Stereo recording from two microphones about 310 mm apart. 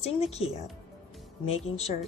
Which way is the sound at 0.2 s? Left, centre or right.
Centre.